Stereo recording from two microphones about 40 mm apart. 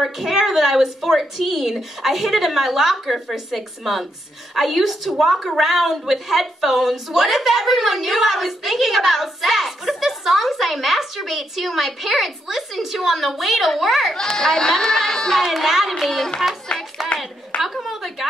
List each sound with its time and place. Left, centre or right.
0.0 s a woman's voice: centre
15.4 s a woman's voice: centre
17.0 s speech: centre
17.6 s a woman's voice: centre